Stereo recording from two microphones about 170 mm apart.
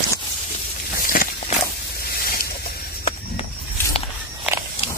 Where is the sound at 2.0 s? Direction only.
60° left (ahead or behind).